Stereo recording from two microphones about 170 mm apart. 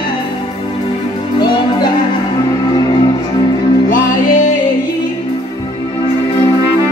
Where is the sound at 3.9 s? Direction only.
50° left (ahead or behind).